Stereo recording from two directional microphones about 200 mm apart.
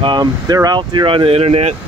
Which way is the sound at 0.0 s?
20° right (ahead or behind).